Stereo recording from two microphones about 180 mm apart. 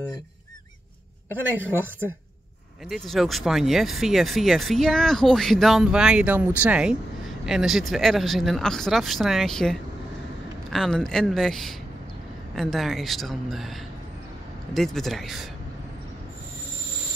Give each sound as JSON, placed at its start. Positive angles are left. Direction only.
{"t": 1.5, "sound": "speech", "side_deg": -10}
{"t": 2.9, "sound": "speech", "side_deg": 0}